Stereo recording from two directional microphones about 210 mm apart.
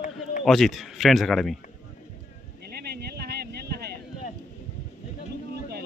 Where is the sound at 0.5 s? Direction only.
Centre (ahead or behind).